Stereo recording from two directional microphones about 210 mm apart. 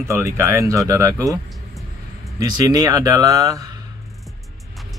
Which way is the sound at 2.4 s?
20° right (ahead or behind).